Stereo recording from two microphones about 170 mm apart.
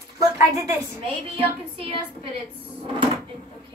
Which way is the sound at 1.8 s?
35° right (ahead or behind).